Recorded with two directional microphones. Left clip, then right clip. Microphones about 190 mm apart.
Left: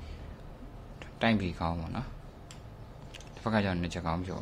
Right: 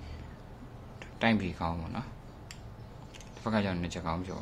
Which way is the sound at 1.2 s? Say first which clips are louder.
Even; 10° left (ahead or behind).